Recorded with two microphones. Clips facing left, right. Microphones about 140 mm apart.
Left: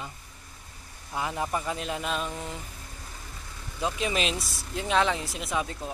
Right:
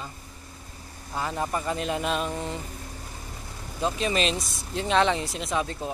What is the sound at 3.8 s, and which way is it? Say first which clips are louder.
Speech: right 3 dB; 5° left (ahead or behind).